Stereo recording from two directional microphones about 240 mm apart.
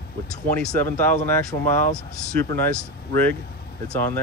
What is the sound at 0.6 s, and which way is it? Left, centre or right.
Speech, centre.